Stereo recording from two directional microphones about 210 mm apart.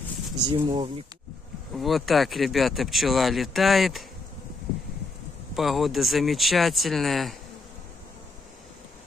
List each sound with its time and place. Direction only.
0.4 s speech: 20° right (ahead or behind)
1.8 s speech: centre (ahead or behind)
5.6 s speech: centre (ahead or behind)